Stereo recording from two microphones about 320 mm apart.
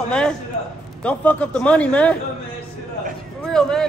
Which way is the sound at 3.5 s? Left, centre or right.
Centre.